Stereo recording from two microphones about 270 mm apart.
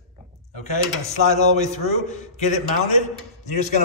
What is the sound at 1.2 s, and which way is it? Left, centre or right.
A man's voice, left.